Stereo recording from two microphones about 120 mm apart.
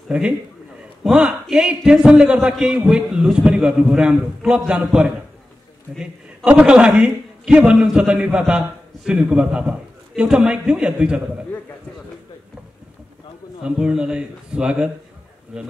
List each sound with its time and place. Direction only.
0.1 s a man's voice: 10° right (ahead or behind)
13.7 s a man's voice: 5° right (ahead or behind)